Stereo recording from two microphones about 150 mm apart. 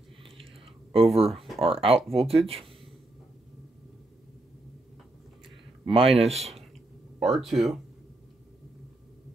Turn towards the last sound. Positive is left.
turn(degrees=0)  # may be behind; listen again after turning